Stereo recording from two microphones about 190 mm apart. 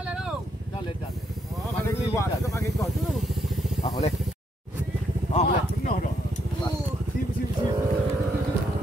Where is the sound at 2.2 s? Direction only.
15° left (ahead or behind).